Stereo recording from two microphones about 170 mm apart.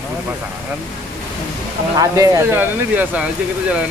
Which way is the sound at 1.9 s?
20° right (ahead or behind).